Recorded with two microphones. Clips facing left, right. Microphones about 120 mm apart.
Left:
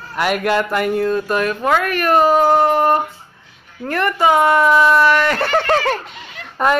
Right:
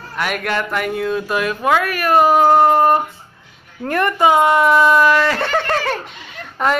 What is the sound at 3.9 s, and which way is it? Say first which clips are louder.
Speech: right 1 dB; 20° right (ahead or behind).